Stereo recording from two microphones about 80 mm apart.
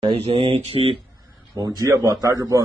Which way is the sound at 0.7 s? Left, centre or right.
Right.